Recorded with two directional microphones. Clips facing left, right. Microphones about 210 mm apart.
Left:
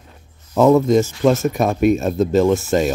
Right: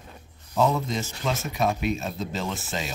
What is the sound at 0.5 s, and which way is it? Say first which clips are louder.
Speech: left 12 dB; 55° left (ahead or behind).